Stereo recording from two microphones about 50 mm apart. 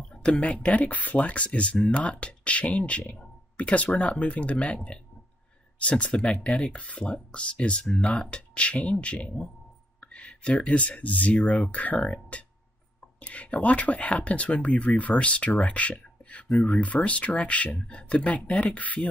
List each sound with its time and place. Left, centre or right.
0.0 s a sound: centre
0.5 s speech: left
4.7 s speech: centre
5.8 s speech: left